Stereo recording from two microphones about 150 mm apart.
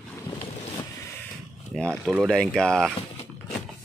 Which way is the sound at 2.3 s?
5° left (ahead or behind).